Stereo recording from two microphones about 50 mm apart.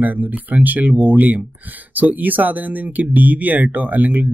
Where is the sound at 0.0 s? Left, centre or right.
Right.